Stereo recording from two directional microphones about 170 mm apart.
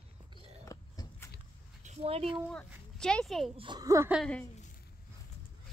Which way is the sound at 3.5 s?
30° right (ahead or behind).